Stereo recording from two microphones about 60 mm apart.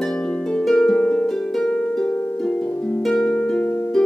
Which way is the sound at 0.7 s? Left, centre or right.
Centre.